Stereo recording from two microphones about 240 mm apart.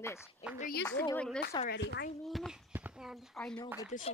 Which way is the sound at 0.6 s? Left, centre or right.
Left.